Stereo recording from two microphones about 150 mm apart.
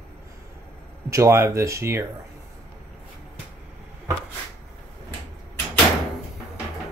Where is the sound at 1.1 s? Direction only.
20° right (ahead or behind).